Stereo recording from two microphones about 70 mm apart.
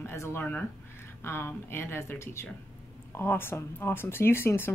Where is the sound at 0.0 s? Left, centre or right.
Left.